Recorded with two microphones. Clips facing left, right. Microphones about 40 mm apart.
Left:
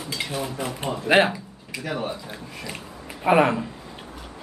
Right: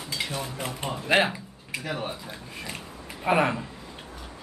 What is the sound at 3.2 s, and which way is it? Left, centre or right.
Speech, centre.